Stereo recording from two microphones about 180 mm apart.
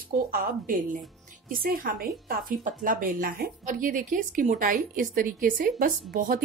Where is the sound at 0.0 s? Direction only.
55° right (ahead or behind).